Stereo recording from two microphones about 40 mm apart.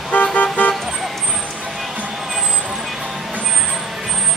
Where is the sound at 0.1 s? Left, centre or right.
Left.